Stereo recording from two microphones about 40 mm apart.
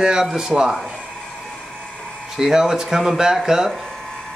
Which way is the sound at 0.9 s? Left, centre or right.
Centre.